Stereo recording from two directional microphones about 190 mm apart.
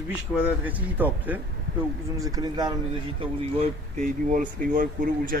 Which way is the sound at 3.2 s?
30° right (ahead or behind).